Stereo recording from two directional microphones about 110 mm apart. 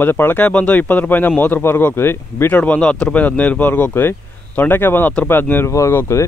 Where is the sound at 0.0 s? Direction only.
20° left (ahead or behind).